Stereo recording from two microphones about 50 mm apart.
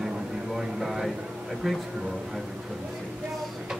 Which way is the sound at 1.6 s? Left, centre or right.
Centre.